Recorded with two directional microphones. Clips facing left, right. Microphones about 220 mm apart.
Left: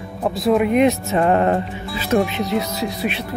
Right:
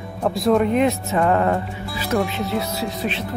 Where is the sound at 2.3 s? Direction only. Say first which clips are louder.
Left 2 dB; 15° left (ahead or behind).